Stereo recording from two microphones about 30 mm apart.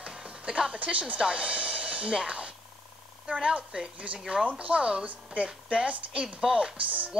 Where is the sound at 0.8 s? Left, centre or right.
Right.